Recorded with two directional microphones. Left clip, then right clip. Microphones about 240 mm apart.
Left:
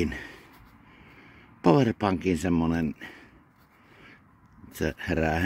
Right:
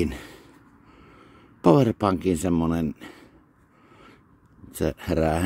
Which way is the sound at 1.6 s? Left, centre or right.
Centre.